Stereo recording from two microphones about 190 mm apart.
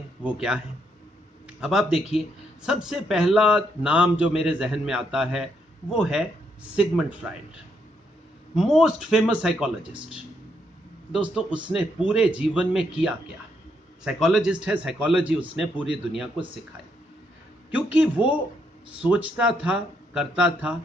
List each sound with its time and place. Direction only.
0.2 s a man's voice: 5° right (ahead or behind)
1.6 s a man's voice: centre (ahead or behind)
2.0 s speech: 30° left (ahead or behind)
2.6 s a man's voice: 5° right (ahead or behind)
8.5 s a man's voice: centre (ahead or behind)
11.1 s a man's voice: 5° right (ahead or behind)
17.6 s a man's voice: 5° right (ahead or behind)